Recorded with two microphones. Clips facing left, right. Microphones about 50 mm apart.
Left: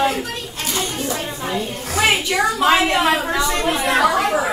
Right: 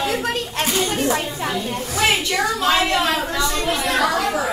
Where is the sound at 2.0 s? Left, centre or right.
Centre.